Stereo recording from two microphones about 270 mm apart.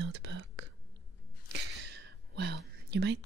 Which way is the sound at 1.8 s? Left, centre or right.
Right.